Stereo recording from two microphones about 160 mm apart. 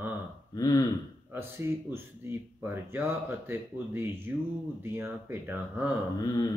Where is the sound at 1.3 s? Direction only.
15° right (ahead or behind).